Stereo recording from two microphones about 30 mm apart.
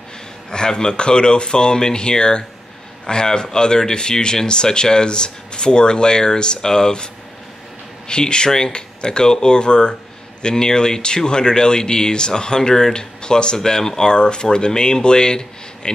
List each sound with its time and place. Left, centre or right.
0.5 s speech: left
8.1 s speech: left
8.5 s speech: centre
8.7 s speech: left